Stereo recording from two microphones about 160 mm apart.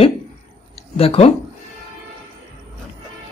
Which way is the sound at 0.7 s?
40° left (ahead or behind).